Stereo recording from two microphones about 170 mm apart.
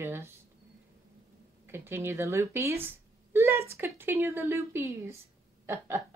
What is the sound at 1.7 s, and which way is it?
Speech, 15° right (ahead or behind).